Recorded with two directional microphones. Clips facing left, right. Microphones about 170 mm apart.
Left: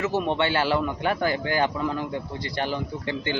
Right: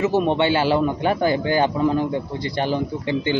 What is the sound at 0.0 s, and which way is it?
A man's voice, 20° right (ahead or behind).